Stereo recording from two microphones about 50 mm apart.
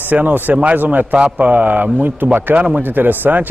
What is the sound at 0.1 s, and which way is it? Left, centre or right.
Speech, right.